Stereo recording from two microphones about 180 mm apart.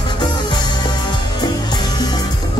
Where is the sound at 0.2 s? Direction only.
25° left (ahead or behind).